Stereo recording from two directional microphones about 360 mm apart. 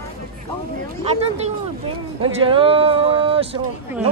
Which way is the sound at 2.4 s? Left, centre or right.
Centre.